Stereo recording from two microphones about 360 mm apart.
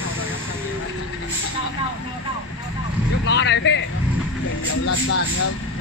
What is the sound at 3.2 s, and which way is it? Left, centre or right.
Vehicle, left.